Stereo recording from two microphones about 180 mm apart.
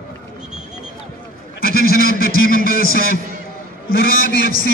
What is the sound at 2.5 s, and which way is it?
A man's voice, 55° left (ahead or behind).